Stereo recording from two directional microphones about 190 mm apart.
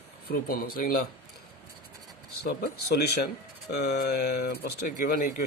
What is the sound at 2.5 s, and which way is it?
Speech, 55° left (ahead or behind).